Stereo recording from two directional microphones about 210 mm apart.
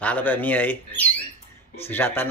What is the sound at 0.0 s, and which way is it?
Speech, 10° left (ahead or behind).